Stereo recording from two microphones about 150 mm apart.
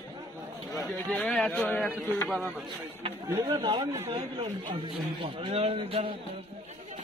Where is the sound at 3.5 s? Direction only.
35° right (ahead or behind).